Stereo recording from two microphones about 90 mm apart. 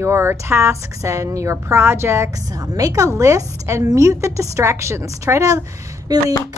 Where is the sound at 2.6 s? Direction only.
45° right (ahead or behind).